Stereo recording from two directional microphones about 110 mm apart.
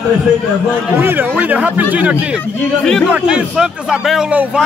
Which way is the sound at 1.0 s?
20° right (ahead or behind).